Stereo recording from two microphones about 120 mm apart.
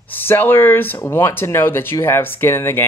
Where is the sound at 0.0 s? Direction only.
15° left (ahead or behind).